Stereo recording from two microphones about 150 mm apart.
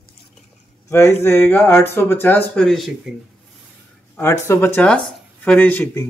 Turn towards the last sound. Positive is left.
turn(degrees=15)  # may be behind; listen again after turning